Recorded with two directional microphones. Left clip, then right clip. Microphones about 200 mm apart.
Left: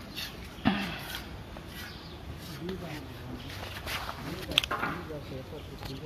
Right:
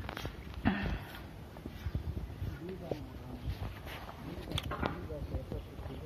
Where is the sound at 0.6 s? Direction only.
10° left (ahead or behind).